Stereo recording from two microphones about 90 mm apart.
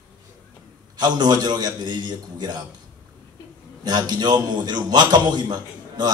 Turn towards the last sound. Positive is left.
turn(degrees=-50)  # may be behind; listen again after turning